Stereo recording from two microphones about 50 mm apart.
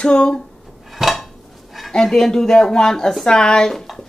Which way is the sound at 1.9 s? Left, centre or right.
Centre.